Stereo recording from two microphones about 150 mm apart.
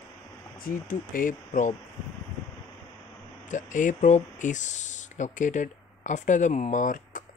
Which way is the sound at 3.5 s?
55° left (ahead or behind).